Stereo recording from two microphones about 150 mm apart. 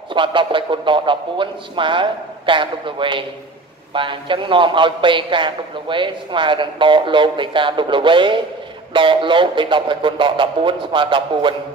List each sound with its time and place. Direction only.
0.1 s a man's voice: 35° right (ahead or behind)